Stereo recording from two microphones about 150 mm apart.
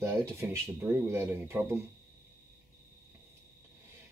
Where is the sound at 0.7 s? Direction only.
15° right (ahead or behind).